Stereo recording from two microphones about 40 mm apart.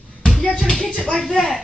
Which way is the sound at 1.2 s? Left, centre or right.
Centre.